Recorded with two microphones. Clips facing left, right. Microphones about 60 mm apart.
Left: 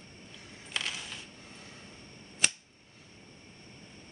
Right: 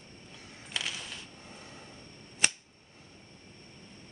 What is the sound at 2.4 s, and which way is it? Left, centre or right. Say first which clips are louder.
Camera: right 1 dB; centre.